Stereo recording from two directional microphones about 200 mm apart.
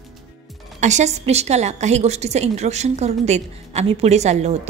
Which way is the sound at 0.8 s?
35° right (ahead or behind).